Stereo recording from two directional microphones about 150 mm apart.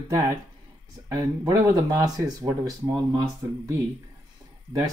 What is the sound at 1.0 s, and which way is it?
Speech, 20° right (ahead or behind).